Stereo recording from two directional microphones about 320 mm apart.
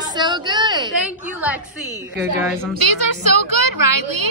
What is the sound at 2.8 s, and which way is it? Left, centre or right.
Speech, right.